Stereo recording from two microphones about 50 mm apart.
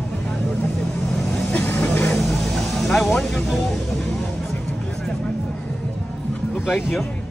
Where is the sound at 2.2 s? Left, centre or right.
Centre.